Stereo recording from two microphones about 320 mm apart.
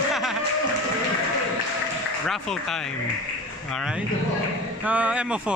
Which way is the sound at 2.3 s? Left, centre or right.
Centre.